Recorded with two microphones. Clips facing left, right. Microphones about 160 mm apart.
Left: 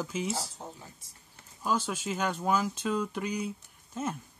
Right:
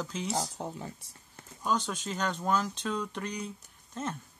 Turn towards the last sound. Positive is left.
turn(degrees=5)  # may be behind; listen again after turning